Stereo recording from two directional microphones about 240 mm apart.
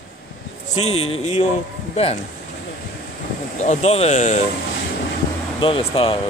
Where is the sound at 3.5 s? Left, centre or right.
Left.